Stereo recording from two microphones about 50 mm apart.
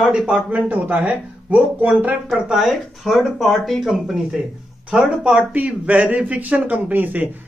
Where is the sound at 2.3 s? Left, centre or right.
Centre.